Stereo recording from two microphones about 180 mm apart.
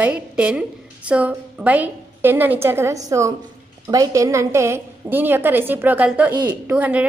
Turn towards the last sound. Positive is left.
turn(degrees=-10)  # may be behind; listen again after turning